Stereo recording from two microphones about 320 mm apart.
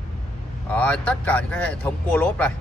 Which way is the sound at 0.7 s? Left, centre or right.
Centre.